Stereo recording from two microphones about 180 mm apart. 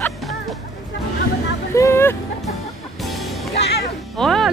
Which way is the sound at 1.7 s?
15° left (ahead or behind).